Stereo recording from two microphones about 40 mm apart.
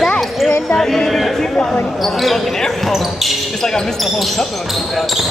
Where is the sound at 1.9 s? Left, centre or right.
Centre.